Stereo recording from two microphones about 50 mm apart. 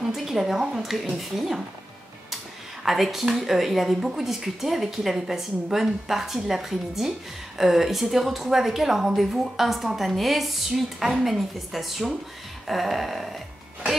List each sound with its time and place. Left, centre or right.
0.0 s speech: centre
2.8 s speech: centre